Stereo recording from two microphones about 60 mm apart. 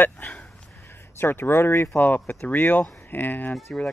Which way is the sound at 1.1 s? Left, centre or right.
Left.